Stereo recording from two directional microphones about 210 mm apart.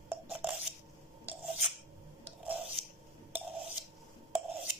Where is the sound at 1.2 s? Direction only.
5° right (ahead or behind).